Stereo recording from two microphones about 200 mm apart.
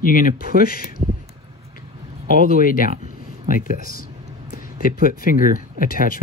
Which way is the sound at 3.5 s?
45° left (ahead or behind).